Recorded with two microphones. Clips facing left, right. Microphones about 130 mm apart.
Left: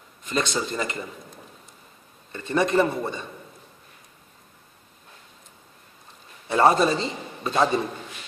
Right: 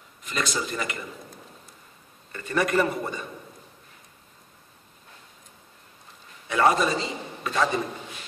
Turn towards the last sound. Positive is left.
turn(degrees=30)  # may be behind; listen again after turning